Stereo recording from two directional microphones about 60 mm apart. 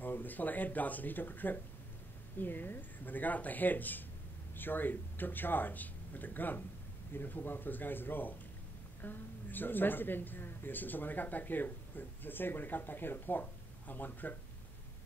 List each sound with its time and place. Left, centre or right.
0.0 s speech: left